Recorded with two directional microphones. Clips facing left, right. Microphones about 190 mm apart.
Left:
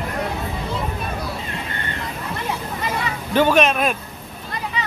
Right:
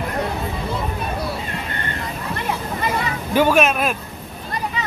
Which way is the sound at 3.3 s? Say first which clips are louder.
Even; 10° right (ahead or behind).